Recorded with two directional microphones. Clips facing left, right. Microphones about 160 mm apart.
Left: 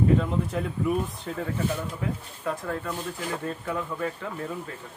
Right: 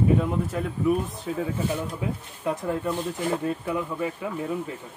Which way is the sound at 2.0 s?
20° right (ahead or behind).